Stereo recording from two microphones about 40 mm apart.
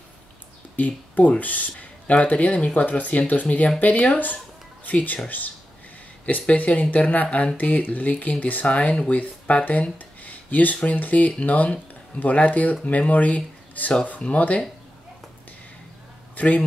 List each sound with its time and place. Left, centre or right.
0.7 s speech: left
6.5 s speech: left
7.5 s speech: left
8.7 s speech: left
9.9 s a sound: left
10.8 s speech: left
16.3 s a man's voice: left